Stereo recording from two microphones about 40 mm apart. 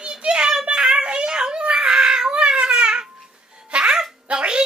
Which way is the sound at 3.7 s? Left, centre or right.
Centre.